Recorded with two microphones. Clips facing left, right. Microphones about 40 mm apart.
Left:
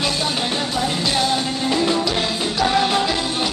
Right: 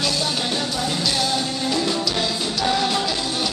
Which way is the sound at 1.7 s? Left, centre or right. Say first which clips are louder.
Left 4 dB; left.